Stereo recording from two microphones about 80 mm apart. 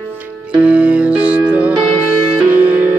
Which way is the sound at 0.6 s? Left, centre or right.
Centre.